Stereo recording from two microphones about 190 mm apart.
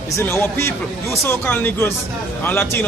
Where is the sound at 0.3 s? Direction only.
10° left (ahead or behind).